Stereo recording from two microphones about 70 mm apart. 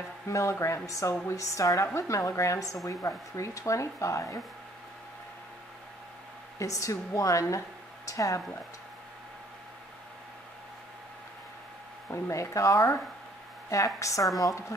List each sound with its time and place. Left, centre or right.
0.3 s a woman's voice: left
6.6 s a woman's voice: left
12.3 s a woman's voice: left